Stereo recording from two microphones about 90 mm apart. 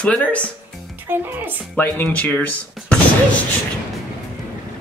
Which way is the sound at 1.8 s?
20° left (ahead or behind).